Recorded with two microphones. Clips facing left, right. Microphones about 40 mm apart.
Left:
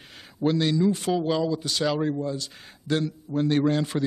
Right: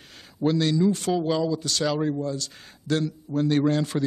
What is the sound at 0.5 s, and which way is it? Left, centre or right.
A man's voice, centre.